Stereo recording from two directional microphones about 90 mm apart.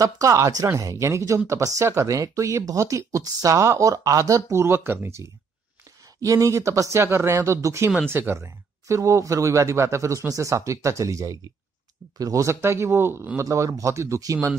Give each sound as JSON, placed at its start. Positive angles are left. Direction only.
{"t": 0.0, "sound": "speech", "side_deg": -40}